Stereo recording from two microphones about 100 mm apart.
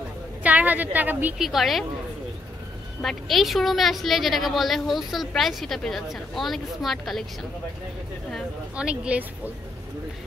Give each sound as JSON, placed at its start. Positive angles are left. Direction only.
{"t": 0.4, "sound": "a woman's voice", "side_deg": -15}
{"t": 1.4, "sound": "a woman's voice", "side_deg": 0}
{"t": 3.0, "sound": "a woman's voice", "side_deg": 0}
{"t": 8.7, "sound": "speech", "side_deg": -10}